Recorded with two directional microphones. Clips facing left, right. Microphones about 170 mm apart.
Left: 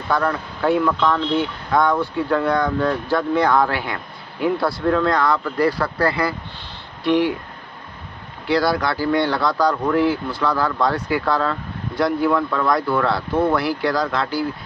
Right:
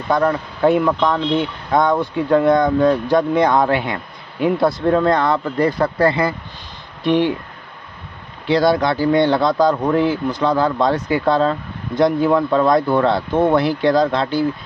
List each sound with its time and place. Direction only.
0.1 s speech: 20° right (ahead or behind)
8.5 s speech: 20° right (ahead or behind)